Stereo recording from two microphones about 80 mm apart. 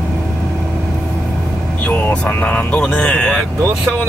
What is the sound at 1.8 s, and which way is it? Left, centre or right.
Vehicle, centre.